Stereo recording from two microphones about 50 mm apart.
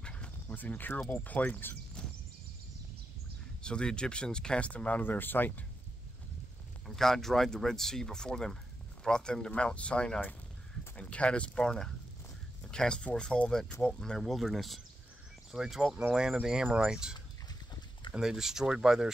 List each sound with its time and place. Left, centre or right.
0.0 s bow-wow: left
0.6 s speech: left
3.6 s speech: centre
5.0 s speech: left
7.0 s speech: centre; by 11.6 s left
11.6 s speech: centre
14.2 s speech: centre
16.0 s speech: centre